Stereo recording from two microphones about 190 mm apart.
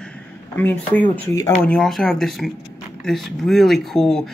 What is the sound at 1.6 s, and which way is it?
Speech, 5° left (ahead or behind).